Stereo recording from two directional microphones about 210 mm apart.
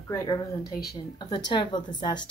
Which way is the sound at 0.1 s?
15° left (ahead or behind).